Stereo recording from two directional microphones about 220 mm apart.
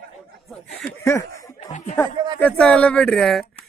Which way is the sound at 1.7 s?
35° left (ahead or behind).